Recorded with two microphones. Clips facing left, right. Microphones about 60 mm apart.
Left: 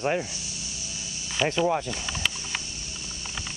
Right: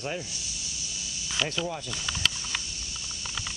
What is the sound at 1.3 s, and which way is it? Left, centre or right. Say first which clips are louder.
Speech: left 6 dB; left.